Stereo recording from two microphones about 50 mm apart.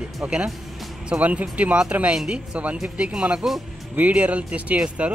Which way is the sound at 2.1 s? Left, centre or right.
Centre.